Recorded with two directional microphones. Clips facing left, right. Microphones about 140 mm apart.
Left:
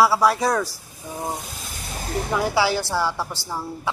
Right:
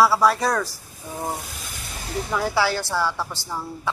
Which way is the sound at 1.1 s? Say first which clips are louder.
Even; 15° left (ahead or behind).